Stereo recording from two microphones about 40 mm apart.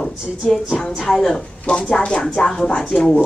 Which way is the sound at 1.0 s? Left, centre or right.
Centre.